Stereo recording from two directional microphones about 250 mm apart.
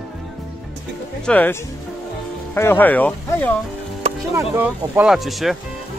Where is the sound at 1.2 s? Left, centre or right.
Centre.